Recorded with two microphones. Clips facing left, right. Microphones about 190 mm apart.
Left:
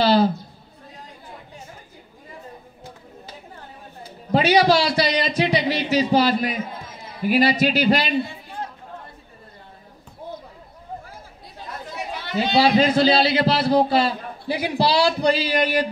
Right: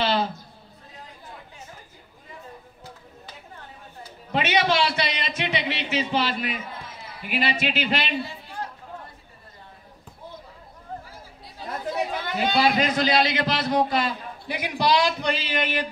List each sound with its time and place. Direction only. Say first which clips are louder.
0.0 s a woman's voice: left 7 dB; 35° left (ahead or behind)
4.3 s a man's voice: left 6 dB; 35° left (ahead or behind)
12.5 s a man's voice: left 6 dB; 30° left (ahead or behind)